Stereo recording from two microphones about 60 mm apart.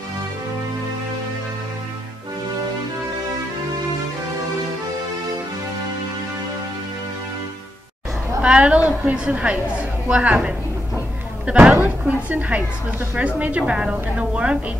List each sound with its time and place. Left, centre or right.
8.4 s a woman's voice: centre
12.1 s a woman's voice: right